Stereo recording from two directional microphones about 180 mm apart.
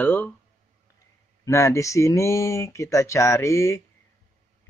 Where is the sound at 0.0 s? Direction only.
10° left (ahead or behind).